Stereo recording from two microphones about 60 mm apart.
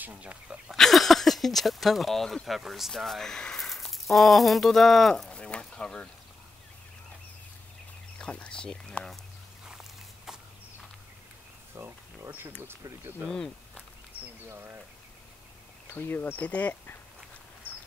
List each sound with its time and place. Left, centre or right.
0.0 s speech: right
0.7 s speech: centre
5.3 s speech: centre
8.2 s speech: centre
11.7 s a sound: right
14.2 s a sound: right
14.5 s speech: right
15.9 s speech: left